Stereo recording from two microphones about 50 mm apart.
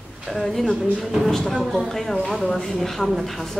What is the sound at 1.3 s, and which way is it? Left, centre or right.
Speech, centre.